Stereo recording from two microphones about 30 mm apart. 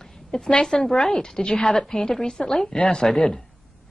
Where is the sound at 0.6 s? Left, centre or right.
Left.